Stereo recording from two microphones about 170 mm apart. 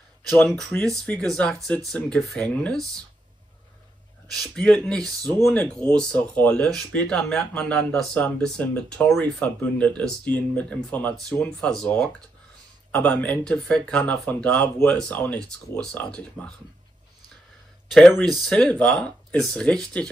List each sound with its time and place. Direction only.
0.4 s speech: 5° left (ahead or behind)
4.3 s speech: centre (ahead or behind)
17.8 s speech: centre (ahead or behind)